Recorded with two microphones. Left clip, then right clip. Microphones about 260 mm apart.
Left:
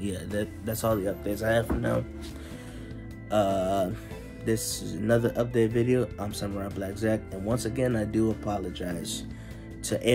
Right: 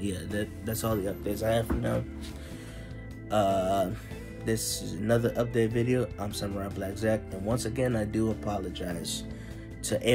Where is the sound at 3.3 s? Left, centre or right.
Left.